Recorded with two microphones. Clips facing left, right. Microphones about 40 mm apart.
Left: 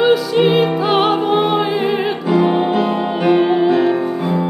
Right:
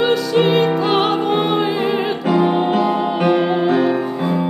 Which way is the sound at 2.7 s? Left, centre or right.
Left.